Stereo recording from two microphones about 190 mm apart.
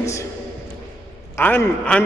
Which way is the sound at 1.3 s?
10° left (ahead or behind).